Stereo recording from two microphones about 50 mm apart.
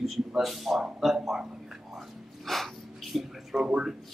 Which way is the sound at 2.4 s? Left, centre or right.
Centre.